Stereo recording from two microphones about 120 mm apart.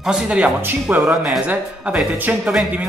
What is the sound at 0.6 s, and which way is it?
Speech, 15° right (ahead or behind).